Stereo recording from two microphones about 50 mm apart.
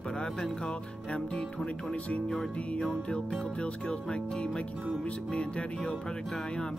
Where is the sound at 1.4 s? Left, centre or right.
Centre.